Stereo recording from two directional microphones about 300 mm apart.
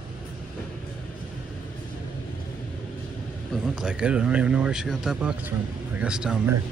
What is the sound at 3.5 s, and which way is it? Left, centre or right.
Speech, centre.